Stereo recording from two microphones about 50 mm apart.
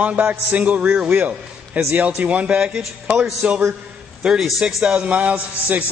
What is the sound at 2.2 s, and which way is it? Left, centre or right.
A man's voice, right.